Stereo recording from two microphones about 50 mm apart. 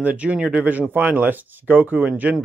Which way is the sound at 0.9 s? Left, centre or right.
Right.